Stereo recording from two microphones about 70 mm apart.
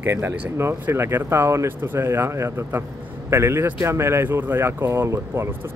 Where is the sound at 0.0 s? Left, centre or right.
Right.